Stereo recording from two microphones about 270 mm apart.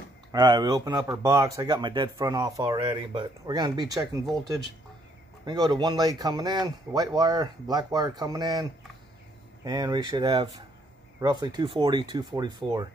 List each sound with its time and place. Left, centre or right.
0.3 s speech: centre
9.7 s speech: centre